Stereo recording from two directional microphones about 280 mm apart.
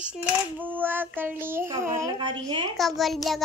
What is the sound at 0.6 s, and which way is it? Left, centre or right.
Child singing, centre.